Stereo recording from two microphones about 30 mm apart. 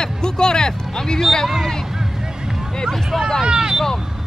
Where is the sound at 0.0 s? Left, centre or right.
Left.